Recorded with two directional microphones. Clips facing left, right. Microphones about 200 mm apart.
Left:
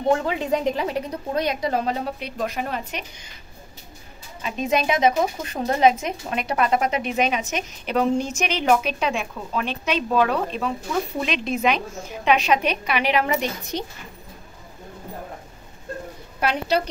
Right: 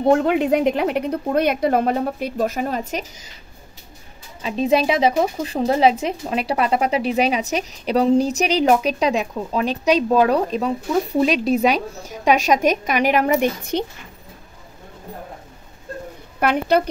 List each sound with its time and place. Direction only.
0.1 s a woman's voice: 60° right (ahead or behind); by 3.1 s 40° right (ahead or behind)
4.4 s speech: 30° right (ahead or behind); by 13.8 s 55° right (ahead or behind)
16.3 s a woman's voice: 55° right (ahead or behind)